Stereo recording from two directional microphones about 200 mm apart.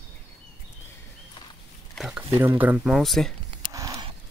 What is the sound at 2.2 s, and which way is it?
Speech, 10° right (ahead or behind).